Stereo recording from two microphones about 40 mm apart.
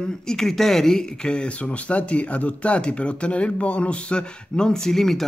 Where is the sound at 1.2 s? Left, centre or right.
Left.